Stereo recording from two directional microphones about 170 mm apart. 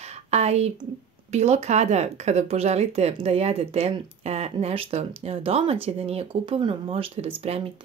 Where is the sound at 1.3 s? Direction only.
40° right (ahead or behind).